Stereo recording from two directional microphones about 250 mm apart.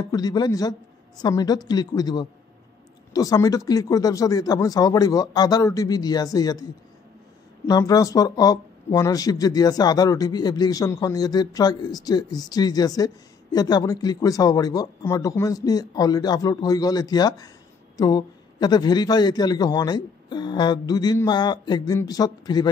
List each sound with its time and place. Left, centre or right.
0.1 s speech: centre
7.6 s speech: centre